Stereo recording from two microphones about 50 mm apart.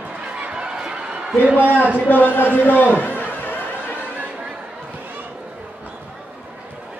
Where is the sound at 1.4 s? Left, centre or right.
Right.